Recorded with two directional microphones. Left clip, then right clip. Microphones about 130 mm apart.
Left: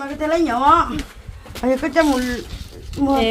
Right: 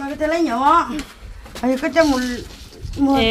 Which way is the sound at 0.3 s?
45° right (ahead or behind).